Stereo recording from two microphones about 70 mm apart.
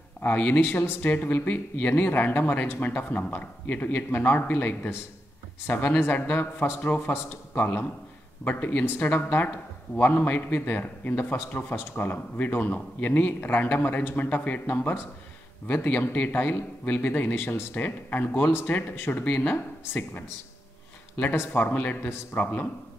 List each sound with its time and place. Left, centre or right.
0.2 s a man's voice: left